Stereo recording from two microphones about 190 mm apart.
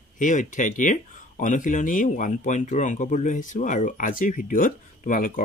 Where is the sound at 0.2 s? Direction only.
40° left (ahead or behind).